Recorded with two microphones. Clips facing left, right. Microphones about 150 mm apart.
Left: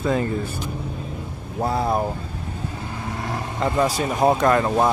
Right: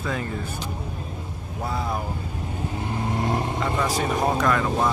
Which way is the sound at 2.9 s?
25° right (ahead or behind).